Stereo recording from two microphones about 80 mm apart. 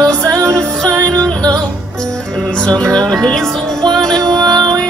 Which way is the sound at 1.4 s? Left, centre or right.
Right.